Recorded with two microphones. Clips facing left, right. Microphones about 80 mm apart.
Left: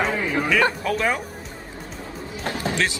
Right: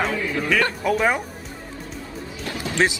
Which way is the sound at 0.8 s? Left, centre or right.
Centre.